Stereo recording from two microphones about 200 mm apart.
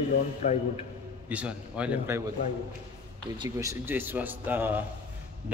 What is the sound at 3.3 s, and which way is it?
A man's voice, 20° right (ahead or behind).